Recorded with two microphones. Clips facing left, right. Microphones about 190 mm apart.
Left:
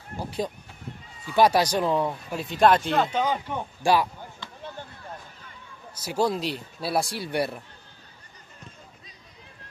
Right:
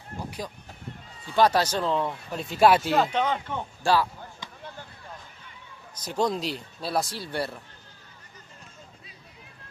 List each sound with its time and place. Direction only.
0.2 s speech: 30° left (ahead or behind)
1.3 s speech: 10° left (ahead or behind)
2.3 s speech: centre (ahead or behind); by 4.1 s 15° left (ahead or behind)
5.9 s speech: 5° left (ahead or behind)